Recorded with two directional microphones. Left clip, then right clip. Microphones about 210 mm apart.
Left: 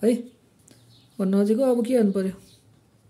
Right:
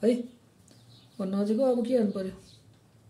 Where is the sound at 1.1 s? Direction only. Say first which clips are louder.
Left 6 dB; 40° left (ahead or behind).